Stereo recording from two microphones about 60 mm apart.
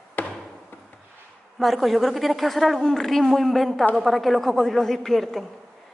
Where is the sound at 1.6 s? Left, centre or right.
Centre.